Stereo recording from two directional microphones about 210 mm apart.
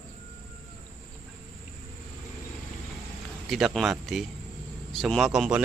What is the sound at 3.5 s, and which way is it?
Speech, centre (ahead or behind).